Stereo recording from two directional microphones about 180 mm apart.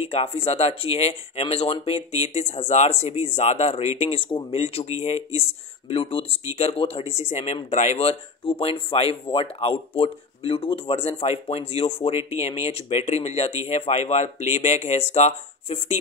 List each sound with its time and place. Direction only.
0.0 s speech: 35° left (ahead or behind)